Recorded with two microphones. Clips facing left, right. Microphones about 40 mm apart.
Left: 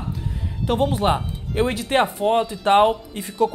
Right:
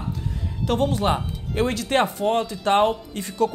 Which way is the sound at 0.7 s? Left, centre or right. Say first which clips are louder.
Left 2 dB; centre.